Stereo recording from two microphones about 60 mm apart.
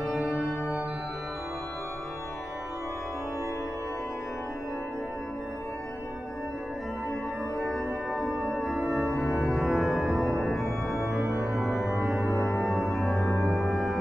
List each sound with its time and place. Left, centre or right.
7.6 s music: centre
9.2 s organ: centre
11.2 s organ: right
11.5 s music: centre
12.3 s music: left
12.5 s music: centre